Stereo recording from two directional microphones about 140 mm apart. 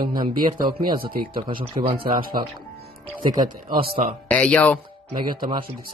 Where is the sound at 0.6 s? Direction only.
90° right.